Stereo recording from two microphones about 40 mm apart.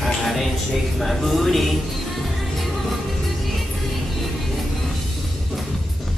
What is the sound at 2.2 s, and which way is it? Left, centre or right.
Music, centre.